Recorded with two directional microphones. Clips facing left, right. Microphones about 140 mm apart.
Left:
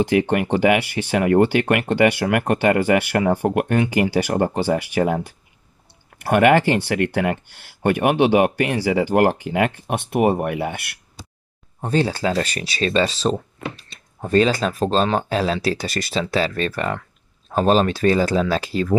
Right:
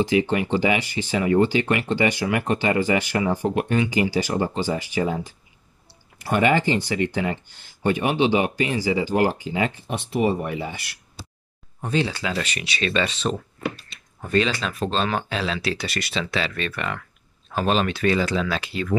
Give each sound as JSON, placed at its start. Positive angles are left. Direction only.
{"t": 0.0, "sound": "speech", "side_deg": 60}
{"t": 11.9, "sound": "speech", "side_deg": 40}